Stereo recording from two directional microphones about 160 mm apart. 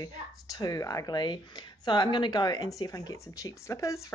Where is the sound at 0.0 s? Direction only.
25° left (ahead or behind).